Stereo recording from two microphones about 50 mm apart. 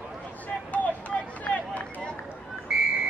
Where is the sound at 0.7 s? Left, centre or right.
Left.